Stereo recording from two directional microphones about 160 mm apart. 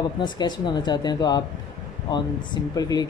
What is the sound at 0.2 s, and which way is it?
Speech, 25° left (ahead or behind).